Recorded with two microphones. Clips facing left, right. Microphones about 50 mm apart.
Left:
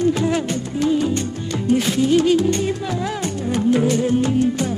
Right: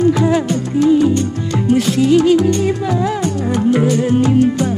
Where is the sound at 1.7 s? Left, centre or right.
Right.